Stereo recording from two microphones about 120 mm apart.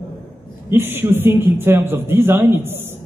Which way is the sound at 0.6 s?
20° right (ahead or behind).